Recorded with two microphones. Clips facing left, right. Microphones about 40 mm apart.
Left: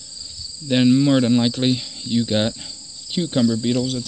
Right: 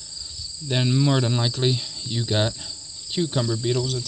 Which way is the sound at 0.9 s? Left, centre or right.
Centre.